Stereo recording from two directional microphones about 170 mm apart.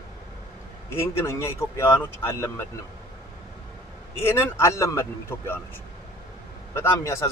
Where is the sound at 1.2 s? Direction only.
15° left (ahead or behind).